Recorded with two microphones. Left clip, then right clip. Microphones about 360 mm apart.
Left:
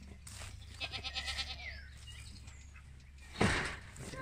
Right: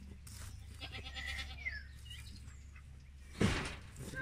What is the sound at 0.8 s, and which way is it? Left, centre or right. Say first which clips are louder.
Goat: left 5 dB; left.